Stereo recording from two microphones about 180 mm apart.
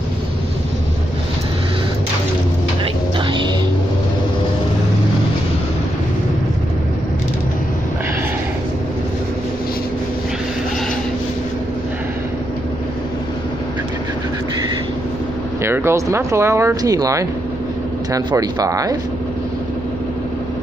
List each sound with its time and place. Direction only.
2.8 s music: 30° right (ahead or behind)
15.6 s speech: 15° right (ahead or behind)